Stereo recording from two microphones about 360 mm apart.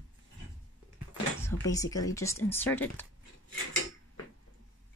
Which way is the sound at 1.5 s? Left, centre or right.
Centre.